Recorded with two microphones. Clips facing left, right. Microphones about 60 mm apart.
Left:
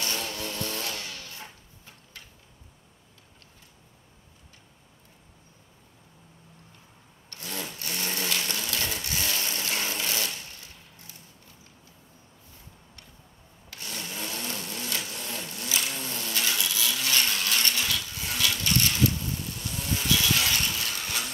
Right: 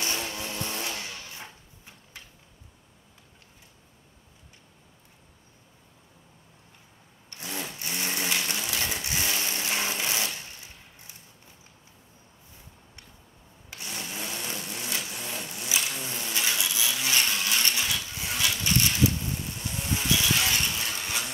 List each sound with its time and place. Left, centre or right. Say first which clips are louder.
0.0 s music: even; right
7.2 s wood: right 1 dB; right
13.7 s a sound: even; right
19.6 s vehicle: right 1 dB; right